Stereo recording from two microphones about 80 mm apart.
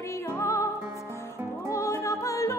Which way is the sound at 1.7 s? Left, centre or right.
Left.